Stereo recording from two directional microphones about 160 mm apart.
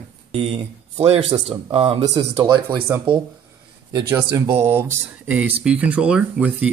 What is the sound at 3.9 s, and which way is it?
Speech, 20° right (ahead or behind).